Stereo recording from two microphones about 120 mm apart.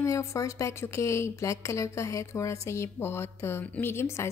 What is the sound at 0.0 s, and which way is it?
Speech, 25° left (ahead or behind).